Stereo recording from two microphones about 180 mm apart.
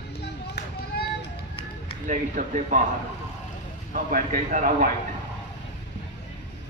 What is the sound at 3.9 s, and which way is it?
Speech, 50° right (ahead or behind).